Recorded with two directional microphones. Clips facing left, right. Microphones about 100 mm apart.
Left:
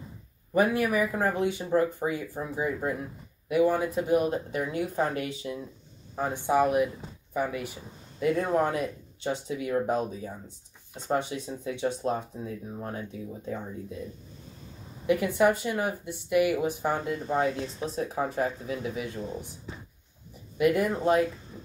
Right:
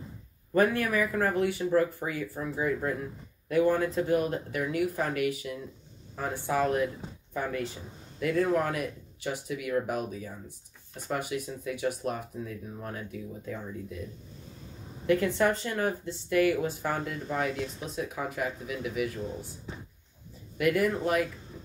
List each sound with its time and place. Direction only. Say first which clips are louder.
0.5 s speech: left 1 dB; 15° left (ahead or behind)
15.0 s speech: left 2 dB; 15° left (ahead or behind)
20.5 s speech: left 2 dB; 25° left (ahead or behind)